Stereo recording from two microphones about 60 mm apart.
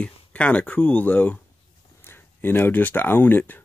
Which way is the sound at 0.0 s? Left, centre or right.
Left.